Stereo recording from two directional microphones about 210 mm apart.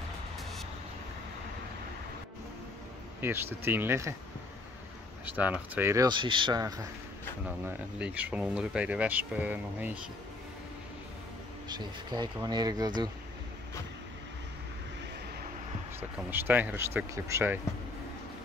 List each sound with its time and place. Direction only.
3.2 s speech: 10° right (ahead or behind)
5.2 s speech: 5° right (ahead or behind)
7.6 s speech: 5° right (ahead or behind)
11.7 s speech: 20° right (ahead or behind)
16.3 s speech: 10° right (ahead or behind)